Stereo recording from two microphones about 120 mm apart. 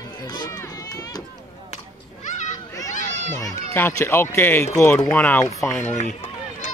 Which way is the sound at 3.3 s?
20° left (ahead or behind).